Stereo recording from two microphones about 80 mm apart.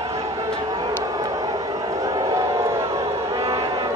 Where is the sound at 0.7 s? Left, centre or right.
Right.